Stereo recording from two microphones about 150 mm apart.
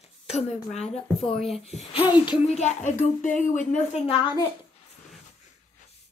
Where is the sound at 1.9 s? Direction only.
30° left (ahead or behind).